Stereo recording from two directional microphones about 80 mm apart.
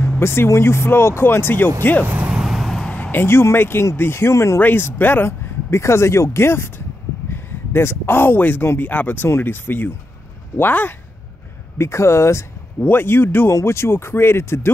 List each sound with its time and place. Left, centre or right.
0.2 s speech: left
2.0 s vehicle: centre
2.4 s vehicle: centre
2.8 s speech: centre; by 4.6 s left
4.6 s speech: left
11.8 s speech: left